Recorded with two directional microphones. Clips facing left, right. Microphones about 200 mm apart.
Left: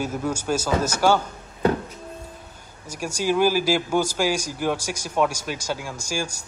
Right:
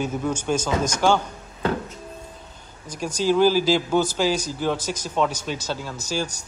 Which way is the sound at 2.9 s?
10° left (ahead or behind).